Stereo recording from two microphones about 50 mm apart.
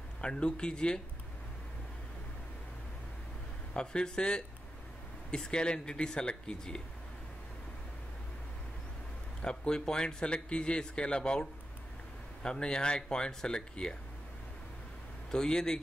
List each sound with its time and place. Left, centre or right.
0.2 s speech: left
3.7 s speech: centre
9.4 s speech: centre
12.4 s speech: centre
15.3 s speech: centre